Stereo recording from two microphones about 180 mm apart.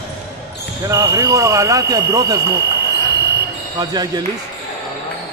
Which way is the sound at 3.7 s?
20° right (ahead or behind).